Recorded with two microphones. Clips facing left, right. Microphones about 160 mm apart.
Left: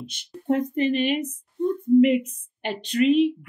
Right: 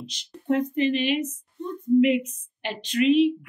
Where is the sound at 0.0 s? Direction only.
55° left (ahead or behind).